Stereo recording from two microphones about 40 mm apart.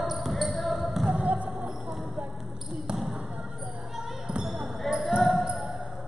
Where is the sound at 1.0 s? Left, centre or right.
Right.